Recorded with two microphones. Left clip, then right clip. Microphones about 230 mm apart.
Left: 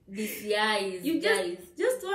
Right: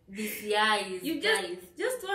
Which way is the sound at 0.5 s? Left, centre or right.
Centre.